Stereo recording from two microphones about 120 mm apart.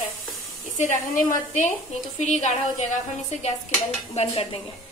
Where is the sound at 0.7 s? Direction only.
90° left.